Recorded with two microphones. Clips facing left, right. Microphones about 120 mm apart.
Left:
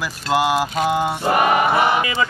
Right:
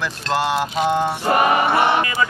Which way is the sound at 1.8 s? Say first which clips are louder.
Even; 5° left (ahead or behind).